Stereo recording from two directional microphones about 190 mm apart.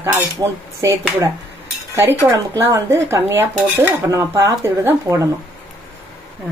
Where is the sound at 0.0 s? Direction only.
15° right (ahead or behind).